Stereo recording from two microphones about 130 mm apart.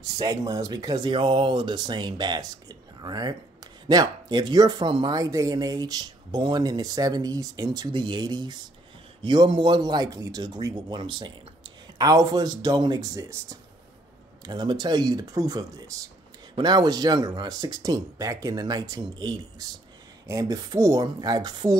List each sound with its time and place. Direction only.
0.0 s speech: 30° right (ahead or behind)